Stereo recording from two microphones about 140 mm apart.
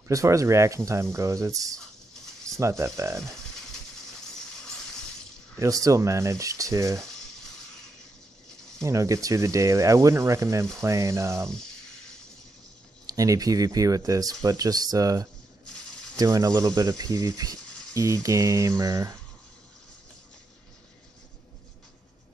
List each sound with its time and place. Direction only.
0.1 s speech: 25° right (ahead or behind)
5.6 s speech: 25° right (ahead or behind)
8.8 s speech: 20° right (ahead or behind)
13.0 s speech: 25° right (ahead or behind)